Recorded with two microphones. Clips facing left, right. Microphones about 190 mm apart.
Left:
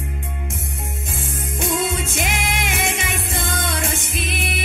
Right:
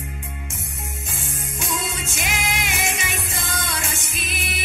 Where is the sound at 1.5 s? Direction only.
55° left (ahead or behind).